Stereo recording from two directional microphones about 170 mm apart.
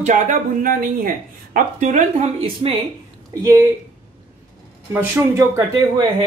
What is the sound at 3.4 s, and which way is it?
Speech, 20° right (ahead or behind).